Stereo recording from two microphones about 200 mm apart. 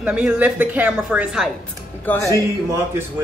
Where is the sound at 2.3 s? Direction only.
15° right (ahead or behind).